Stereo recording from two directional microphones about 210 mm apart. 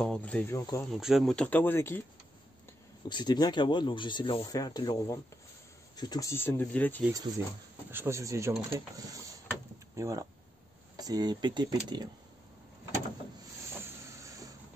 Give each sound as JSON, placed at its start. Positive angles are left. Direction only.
{"t": 0.0, "sound": "speech", "side_deg": 5}
{"t": 0.9, "sound": "speech", "side_deg": 0}
{"t": 3.1, "sound": "speech", "side_deg": 20}
{"t": 7.9, "sound": "speech", "side_deg": -10}